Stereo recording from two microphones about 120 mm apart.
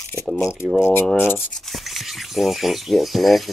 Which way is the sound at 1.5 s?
Centre (ahead or behind).